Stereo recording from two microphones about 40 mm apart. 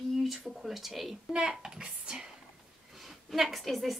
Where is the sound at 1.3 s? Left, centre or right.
Centre.